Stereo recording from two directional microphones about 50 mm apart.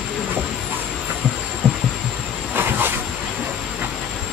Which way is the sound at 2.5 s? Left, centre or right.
Right.